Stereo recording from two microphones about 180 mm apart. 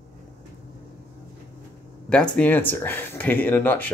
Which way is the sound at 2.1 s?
5° left (ahead or behind).